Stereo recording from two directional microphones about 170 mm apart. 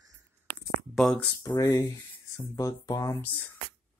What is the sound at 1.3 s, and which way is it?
Speech, 20° left (ahead or behind).